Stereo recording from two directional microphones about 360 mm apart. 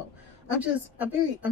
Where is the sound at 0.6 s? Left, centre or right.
Centre.